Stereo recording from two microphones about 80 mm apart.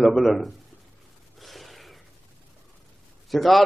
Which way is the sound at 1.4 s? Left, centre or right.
Centre.